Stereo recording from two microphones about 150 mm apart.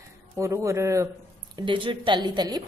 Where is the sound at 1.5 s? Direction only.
35° right (ahead or behind).